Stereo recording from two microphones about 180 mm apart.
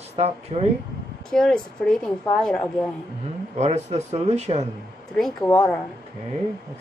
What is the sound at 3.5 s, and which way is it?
Speech, 40° right (ahead or behind).